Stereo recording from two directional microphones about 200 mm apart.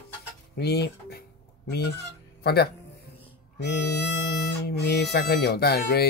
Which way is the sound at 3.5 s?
55° left (ahead or behind).